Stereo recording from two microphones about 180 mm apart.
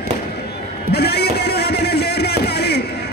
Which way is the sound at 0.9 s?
65° left (ahead or behind).